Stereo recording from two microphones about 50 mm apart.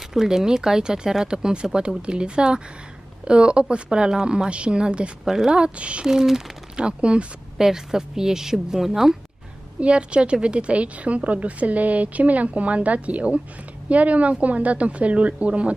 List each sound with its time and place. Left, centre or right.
0.1 s a woman's voice: centre
5.2 s speech: centre
5.5 s a woman's voice: right
6.0 s speech: centre
6.8 s a woman's voice: right
7.5 s speech: centre
9.8 s a woman's voice: right